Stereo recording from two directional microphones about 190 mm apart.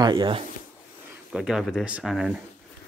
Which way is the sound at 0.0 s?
25° right (ahead or behind).